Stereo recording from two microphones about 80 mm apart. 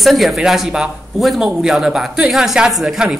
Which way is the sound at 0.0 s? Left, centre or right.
Centre.